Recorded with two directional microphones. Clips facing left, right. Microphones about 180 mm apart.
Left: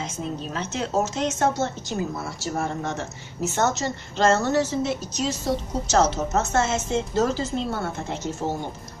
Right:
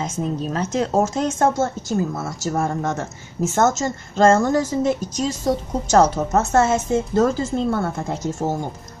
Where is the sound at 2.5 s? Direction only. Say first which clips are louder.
Right 5 dB; 50° right (ahead or behind).